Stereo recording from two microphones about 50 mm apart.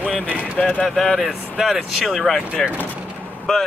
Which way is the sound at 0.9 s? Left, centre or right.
Centre.